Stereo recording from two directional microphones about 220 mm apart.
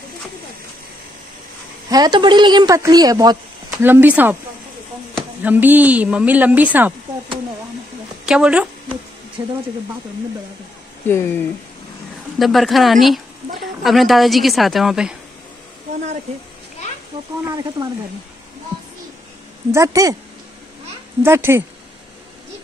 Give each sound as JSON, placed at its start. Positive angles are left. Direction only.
{"t": 1.9, "sound": "a woman's voice", "side_deg": -15}
{"t": 8.3, "sound": "speech", "side_deg": -5}
{"t": 9.4, "sound": "speech", "side_deg": -20}
{"t": 11.1, "sound": "speech", "side_deg": 10}
{"t": 19.7, "sound": "a woman's voice", "side_deg": -15}
{"t": 21.2, "sound": "a woman's voice", "side_deg": -10}